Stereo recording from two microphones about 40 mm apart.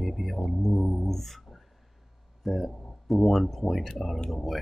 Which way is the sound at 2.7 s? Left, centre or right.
Left.